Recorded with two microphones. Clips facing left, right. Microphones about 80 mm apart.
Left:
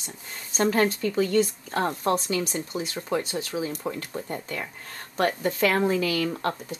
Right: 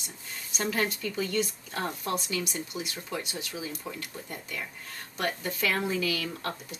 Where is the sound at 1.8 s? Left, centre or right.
Left.